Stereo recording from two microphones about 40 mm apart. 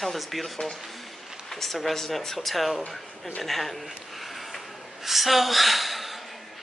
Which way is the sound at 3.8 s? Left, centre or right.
Centre.